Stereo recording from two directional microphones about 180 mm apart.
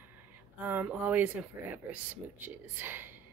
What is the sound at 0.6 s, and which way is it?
Speech, 10° right (ahead or behind).